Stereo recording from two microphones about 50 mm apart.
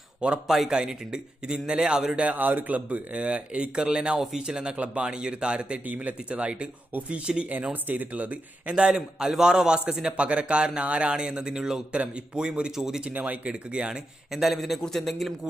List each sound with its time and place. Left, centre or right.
0.2 s a man's voice: right
2.2 s a man's voice: right; by 4.7 s centre
4.7 s speech: right
5.0 s speech: centre
7.7 s speech: right
8.7 s a man's voice: centre
13.1 s speech: right
13.5 s speech: centre
14.3 s speech: centre